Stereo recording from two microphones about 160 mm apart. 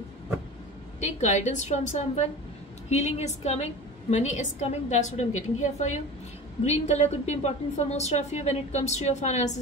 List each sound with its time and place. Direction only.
1.0 s a woman's voice: 45° left (ahead or behind)